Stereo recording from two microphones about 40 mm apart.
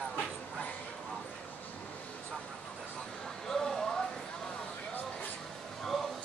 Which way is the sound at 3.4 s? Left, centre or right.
Centre.